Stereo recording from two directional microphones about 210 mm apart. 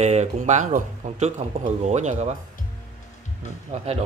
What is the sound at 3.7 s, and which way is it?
Speech, 30° right (ahead or behind).